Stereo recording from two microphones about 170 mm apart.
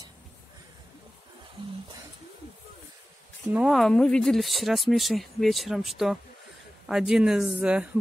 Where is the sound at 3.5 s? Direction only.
Centre (ahead or behind).